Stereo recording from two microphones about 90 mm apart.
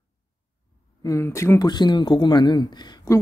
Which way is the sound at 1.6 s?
55° left (ahead or behind).